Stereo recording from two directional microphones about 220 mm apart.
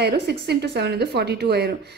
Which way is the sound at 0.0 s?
50° right (ahead or behind).